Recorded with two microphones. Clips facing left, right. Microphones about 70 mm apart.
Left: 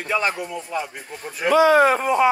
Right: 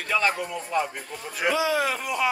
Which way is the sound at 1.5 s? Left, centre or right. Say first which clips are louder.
Left 9 dB; left.